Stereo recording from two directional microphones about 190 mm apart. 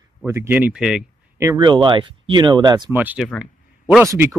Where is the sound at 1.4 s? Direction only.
20° right (ahead or behind).